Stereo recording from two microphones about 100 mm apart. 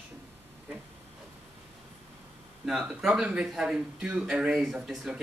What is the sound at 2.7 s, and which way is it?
Speech, 10° right (ahead or behind).